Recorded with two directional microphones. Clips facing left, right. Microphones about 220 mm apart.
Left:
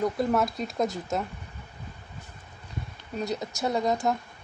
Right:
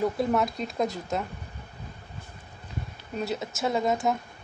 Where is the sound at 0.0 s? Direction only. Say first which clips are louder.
Even; centre (ahead or behind).